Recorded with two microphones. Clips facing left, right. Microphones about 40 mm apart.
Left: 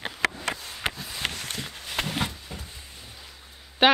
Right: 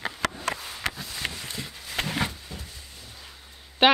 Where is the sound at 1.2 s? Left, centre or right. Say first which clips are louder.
Left 2 dB; left.